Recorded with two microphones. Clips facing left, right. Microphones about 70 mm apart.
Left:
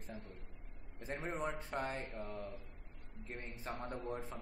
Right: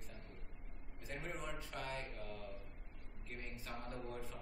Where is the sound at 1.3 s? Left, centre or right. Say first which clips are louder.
Left 8 dB; left.